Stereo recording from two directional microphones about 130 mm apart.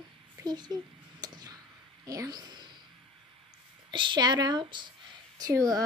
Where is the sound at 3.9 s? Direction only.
35° right (ahead or behind).